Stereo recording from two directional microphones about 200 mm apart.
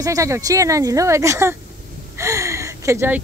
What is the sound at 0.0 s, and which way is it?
Speech, 15° right (ahead or behind).